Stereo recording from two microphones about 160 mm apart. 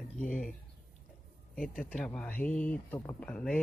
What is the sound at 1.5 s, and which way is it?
Speech, 5° left (ahead or behind).